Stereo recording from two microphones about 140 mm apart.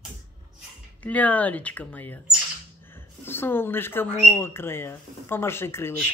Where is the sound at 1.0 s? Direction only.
10° left (ahead or behind).